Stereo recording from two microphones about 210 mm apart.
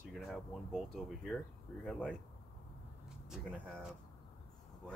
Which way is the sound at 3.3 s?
5° left (ahead or behind).